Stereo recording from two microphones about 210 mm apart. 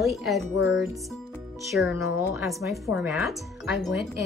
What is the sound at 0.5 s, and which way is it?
Speech, 60° left (ahead or behind).